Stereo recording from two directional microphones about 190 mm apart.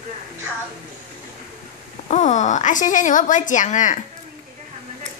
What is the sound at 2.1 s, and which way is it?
Speech, 40° left (ahead or behind).